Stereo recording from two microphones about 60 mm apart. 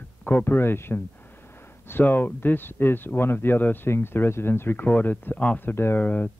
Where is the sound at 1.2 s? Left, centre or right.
Left.